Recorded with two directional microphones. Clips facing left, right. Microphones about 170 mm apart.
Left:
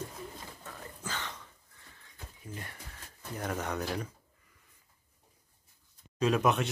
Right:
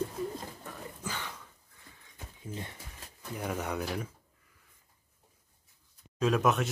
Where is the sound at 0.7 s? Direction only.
10° right (ahead or behind).